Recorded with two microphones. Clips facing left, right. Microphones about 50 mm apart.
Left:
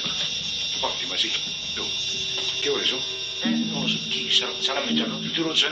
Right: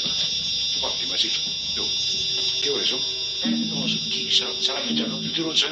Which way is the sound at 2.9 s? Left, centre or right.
Left.